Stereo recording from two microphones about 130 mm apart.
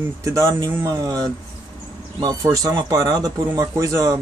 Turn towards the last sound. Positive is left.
turn(degrees=-25)  # may be behind; listen again after turning